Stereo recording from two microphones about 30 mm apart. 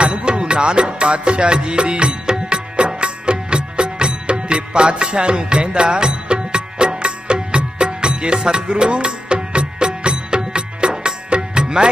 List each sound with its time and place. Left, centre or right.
0.0 s music: right
2.2 s music: right